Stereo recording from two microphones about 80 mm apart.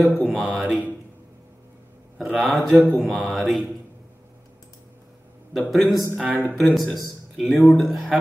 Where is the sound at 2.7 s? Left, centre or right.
Left.